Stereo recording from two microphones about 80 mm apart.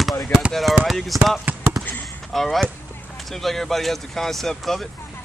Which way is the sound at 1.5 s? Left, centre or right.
Right.